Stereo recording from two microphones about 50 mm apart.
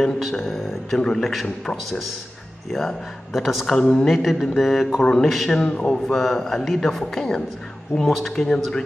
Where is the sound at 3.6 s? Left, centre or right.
Centre.